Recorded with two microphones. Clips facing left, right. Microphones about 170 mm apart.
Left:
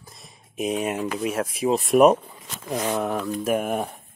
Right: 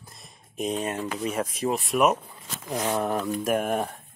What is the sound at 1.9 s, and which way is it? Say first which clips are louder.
Speech: left 7 dB; 50° left (ahead or behind).